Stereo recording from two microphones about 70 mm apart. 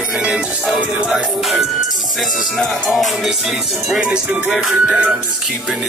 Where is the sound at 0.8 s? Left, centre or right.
Centre.